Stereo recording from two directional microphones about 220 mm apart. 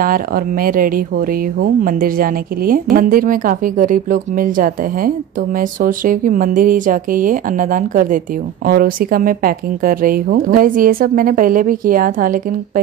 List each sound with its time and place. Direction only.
0.0 s speech: 40° right (ahead or behind)